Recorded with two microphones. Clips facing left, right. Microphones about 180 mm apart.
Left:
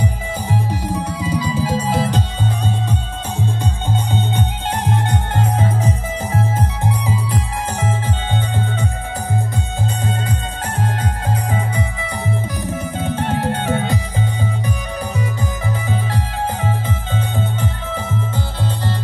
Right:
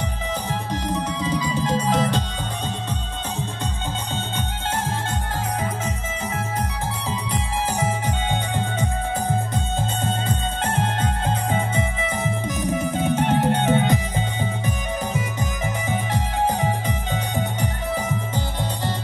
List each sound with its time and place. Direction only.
0.0 s music: 10° left (ahead or behind)
5.3 s music: 30° left (ahead or behind)
7.8 s music: 15° right (ahead or behind)
11.0 s music: 25° right (ahead or behind)
15.6 s music: 20° right (ahead or behind)